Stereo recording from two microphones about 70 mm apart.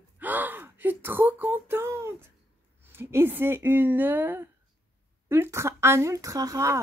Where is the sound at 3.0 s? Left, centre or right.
Right.